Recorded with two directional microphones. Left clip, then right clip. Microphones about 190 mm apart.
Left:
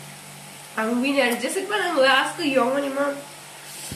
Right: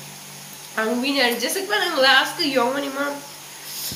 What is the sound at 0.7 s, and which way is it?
A woman's voice, 5° left (ahead or behind).